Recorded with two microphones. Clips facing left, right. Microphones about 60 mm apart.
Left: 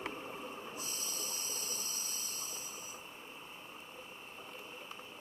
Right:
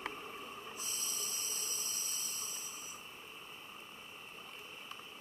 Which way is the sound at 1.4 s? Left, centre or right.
Right.